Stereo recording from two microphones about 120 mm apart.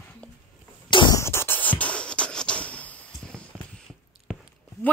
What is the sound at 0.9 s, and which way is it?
Music, 40° left (ahead or behind).